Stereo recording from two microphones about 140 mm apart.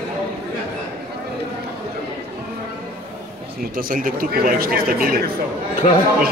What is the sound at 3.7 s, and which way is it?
A man's voice, 90° right.